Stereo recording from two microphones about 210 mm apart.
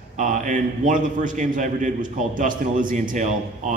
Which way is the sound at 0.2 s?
40° right (ahead or behind).